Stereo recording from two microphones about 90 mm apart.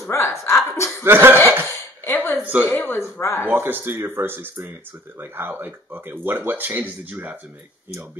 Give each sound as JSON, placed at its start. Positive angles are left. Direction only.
{"t": 0.1, "sound": "chuckle", "side_deg": 30}
{"t": 1.0, "sound": "speech", "side_deg": -25}
{"t": 2.0, "sound": "a sound", "side_deg": 20}
{"t": 2.6, "sound": "speech", "side_deg": 20}
{"t": 3.4, "sound": "speech", "side_deg": -20}